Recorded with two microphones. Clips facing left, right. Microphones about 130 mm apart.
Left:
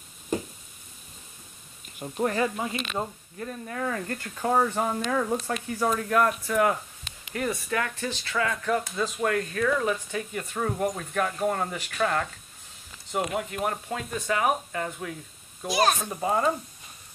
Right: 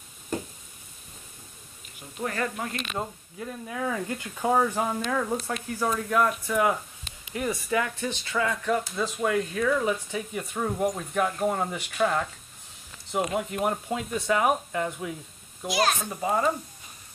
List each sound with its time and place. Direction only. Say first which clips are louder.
2.0 s speech: left 6 dB; 35° left (ahead or behind)
2.3 s speech: left 3 dB; 10° left (ahead or behind)
3.0 s speech: left 1 dB; 5° right (ahead or behind)
16.1 s speech: even; centre (ahead or behind)